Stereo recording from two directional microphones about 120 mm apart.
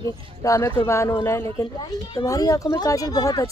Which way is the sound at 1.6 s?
40° left (ahead or behind).